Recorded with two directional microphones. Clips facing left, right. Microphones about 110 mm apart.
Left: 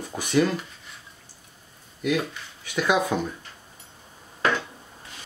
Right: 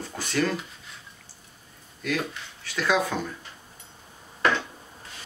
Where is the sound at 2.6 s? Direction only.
15° left (ahead or behind).